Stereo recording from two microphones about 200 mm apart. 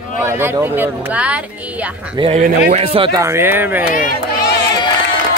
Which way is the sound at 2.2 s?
35° right (ahead or behind).